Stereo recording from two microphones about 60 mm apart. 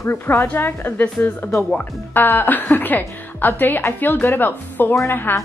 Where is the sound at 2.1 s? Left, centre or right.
Left.